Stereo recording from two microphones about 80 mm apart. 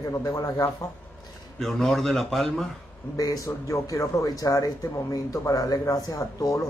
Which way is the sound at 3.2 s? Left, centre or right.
Left.